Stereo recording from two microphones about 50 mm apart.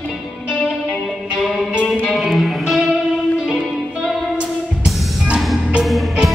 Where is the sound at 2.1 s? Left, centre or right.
Centre.